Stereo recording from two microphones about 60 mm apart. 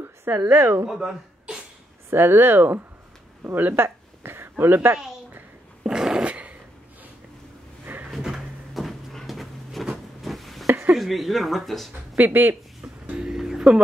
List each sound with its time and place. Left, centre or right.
0.2 s a woman's voice: right
0.8 s speech: centre
2.0 s speech: right
5.9 s dog: centre
6.2 s a sound: right
7.8 s drawer open or close: right
8.2 s a sound: centre
11.0 s speech: centre
12.2 s speech: right
13.0 s music: centre